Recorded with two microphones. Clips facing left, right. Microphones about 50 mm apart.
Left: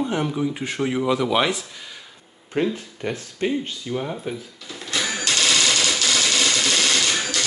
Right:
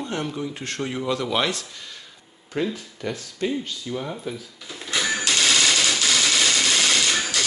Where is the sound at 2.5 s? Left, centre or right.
Left.